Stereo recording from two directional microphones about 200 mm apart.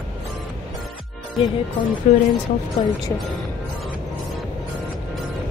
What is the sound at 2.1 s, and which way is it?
Speech, 35° left (ahead or behind).